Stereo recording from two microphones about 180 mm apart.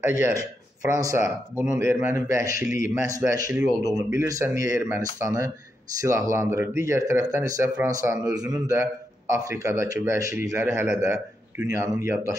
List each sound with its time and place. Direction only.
0.0 s a man's voice: 15° right (ahead or behind)